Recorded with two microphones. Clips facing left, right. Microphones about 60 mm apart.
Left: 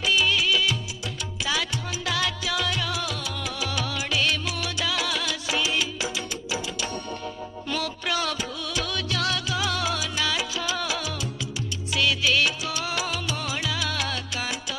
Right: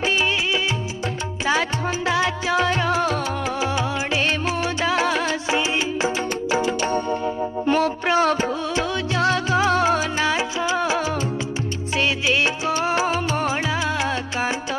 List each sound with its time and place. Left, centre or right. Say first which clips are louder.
0.0 s music: right 2 dB; right
2.0 s music: right 6 dB; right
12.0 s music: right 2 dB; right